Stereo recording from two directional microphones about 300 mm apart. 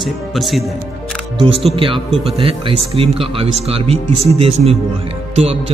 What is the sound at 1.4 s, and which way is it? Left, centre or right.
A man's voice, centre.